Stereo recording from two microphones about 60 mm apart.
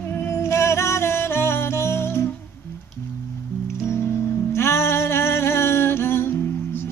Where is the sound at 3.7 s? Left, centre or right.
Left.